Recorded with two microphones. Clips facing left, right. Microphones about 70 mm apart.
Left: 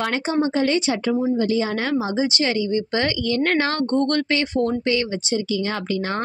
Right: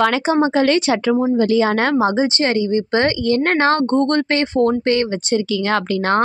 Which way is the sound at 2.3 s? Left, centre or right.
Right.